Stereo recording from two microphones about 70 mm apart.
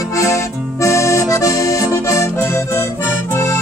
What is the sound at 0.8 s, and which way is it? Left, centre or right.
Accordion, left.